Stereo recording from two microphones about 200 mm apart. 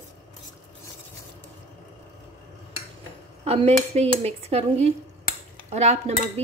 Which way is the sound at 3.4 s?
30° right (ahead or behind).